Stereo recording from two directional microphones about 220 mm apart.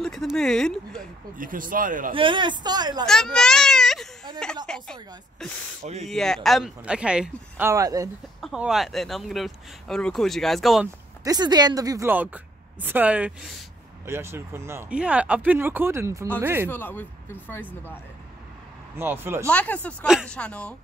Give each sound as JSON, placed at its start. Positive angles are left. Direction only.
{"t": 0.0, "sound": "speech", "side_deg": 0}
{"t": 1.4, "sound": "speech", "side_deg": -40}
{"t": 2.1, "sound": "speech", "side_deg": -20}
{"t": 3.1, "sound": "speech", "side_deg": 0}
{"t": 8.4, "sound": "speech", "side_deg": 0}
{"t": 11.2, "sound": "speech", "side_deg": -20}
{"t": 16.7, "sound": "speech", "side_deg": 10}
{"t": 18.9, "sound": "speech", "side_deg": -10}
{"t": 19.4, "sound": "speech", "side_deg": 5}